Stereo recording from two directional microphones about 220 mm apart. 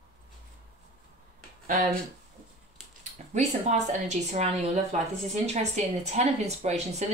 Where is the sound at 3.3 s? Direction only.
30° right (ahead or behind).